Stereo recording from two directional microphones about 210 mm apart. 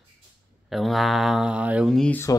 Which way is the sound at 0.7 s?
Centre (ahead or behind).